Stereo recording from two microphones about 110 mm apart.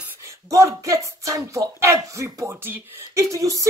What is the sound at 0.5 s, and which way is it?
Speech, 30° right (ahead or behind).